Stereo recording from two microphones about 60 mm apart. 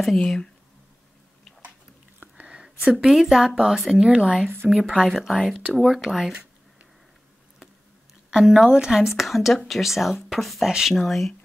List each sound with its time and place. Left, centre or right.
0.0 s speech: centre
2.1 s a sound: centre
2.6 s speech: centre
4.1 s speech: centre
5.0 s speech: centre
8.3 s speech: centre